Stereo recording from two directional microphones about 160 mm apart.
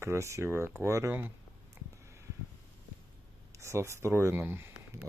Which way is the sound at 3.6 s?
15° right (ahead or behind).